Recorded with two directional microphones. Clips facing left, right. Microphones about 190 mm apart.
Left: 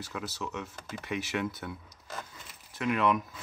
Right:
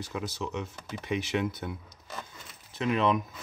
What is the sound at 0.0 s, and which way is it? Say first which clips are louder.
Speech: right 3 dB; 15° right (ahead or behind).